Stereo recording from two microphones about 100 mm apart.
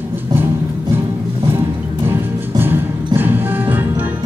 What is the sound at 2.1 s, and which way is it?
Music, 20° right (ahead or behind).